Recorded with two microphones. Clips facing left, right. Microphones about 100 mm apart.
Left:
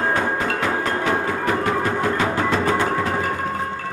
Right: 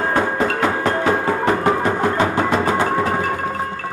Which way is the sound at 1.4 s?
25° right (ahead or behind).